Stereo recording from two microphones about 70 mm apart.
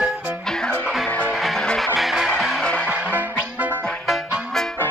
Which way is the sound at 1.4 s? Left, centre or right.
Centre.